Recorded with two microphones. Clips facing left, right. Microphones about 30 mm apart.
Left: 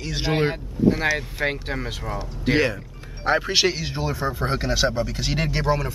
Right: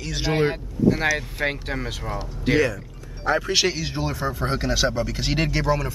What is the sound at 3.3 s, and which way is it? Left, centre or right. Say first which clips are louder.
Speech: left 1 dB; centre.